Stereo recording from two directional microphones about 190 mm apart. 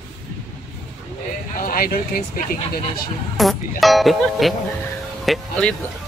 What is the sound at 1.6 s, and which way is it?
Speech, 50° left (ahead or behind).